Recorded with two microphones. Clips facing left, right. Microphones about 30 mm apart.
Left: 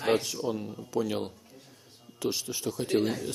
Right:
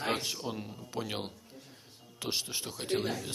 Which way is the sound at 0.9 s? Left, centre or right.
Right.